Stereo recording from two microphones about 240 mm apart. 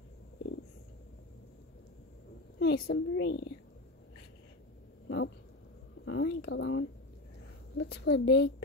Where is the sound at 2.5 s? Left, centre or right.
Left.